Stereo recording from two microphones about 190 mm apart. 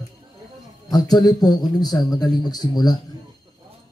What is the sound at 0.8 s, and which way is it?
A man's voice, 20° left (ahead or behind).